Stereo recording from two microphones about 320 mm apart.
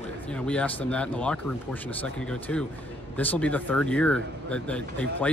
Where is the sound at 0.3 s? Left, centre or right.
Centre.